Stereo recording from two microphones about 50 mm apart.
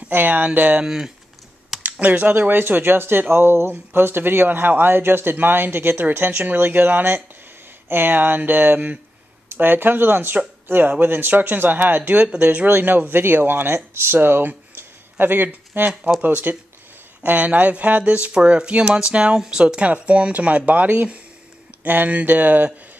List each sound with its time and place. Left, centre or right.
0.1 s speech: right
0.8 s speech: centre
1.9 s speech: right
2.5 s speech: right
14.8 s a sound: right
16.2 s speech: right